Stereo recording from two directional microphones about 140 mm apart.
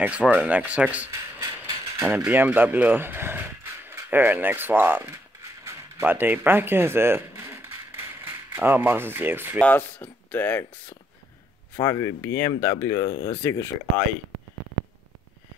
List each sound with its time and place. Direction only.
0.0 s speech: 10° right (ahead or behind)
2.0 s speech: 10° right (ahead or behind)
5.6 s a sound: 20° right (ahead or behind)
9.6 s speech: 10° left (ahead or behind)